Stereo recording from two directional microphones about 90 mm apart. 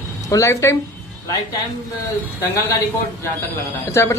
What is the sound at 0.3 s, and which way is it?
Speech, 35° left (ahead or behind).